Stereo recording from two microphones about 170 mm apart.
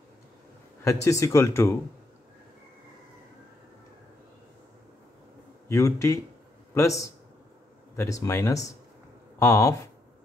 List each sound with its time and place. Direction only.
0.8 s speech: 15° left (ahead or behind)
5.7 s a man's voice: 15° left (ahead or behind)